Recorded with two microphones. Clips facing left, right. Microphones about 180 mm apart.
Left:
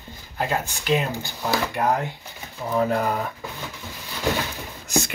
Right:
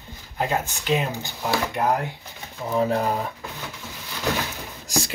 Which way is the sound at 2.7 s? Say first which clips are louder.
Even; 25° right (ahead or behind).